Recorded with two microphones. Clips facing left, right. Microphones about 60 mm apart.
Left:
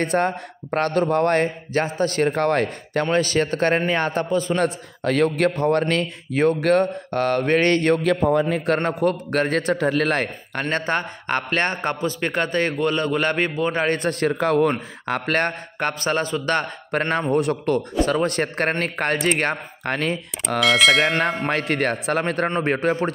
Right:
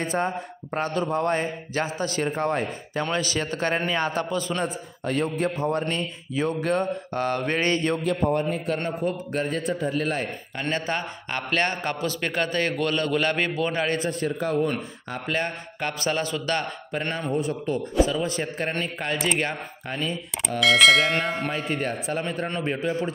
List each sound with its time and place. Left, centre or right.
0.0 s speech: left
3.1 s a man's voice: left
4.6 s a man's voice: left
6.3 s speech: left
8.0 s a man's voice: left
10.6 s a man's voice: left
14.2 s a man's voice: left
15.0 s a man's voice: left
16.9 s a man's voice: left
19.8 s speech: left
20.6 s bell: centre
21.5 s speech: left
22.6 s speech: left